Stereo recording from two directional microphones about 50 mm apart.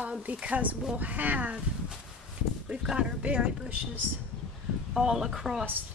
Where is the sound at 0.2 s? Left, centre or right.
Right.